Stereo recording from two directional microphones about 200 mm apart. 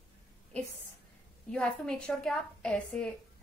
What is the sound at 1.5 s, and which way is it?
A woman's voice, 5° left (ahead or behind).